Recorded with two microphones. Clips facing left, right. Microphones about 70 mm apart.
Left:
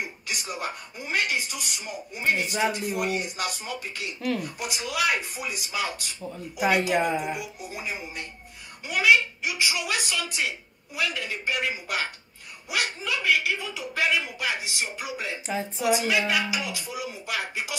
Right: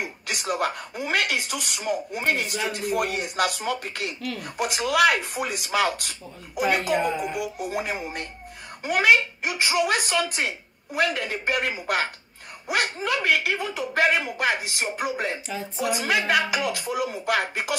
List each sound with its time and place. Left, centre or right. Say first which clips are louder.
0.0 s a woman's voice: right 3 dB; right
6.6 s speech: right 1 dB; right
7.3 s a woman's voice: right 8 dB; right